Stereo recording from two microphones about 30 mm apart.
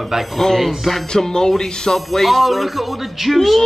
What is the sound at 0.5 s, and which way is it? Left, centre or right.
Speech, centre.